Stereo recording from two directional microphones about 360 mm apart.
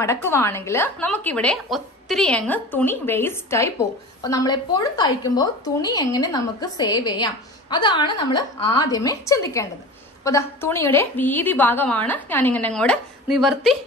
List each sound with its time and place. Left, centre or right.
0.0 s a woman's voice: centre